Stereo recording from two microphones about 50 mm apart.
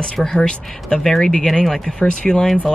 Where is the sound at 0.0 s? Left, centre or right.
Centre.